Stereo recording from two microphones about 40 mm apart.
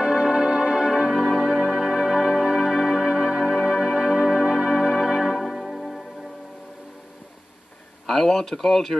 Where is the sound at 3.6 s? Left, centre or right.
Centre.